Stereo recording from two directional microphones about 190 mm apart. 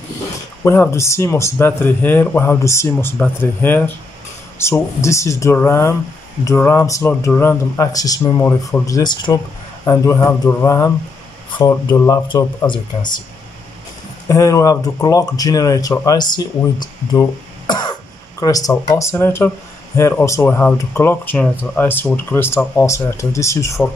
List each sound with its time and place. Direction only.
0.7 s speech: 15° left (ahead or behind)
14.2 s speech: 15° left (ahead or behind)